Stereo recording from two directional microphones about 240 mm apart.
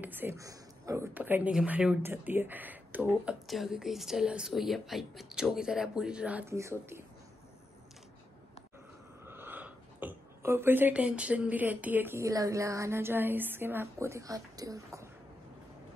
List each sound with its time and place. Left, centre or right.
0.0 s speech: centre
9.2 s speech: centre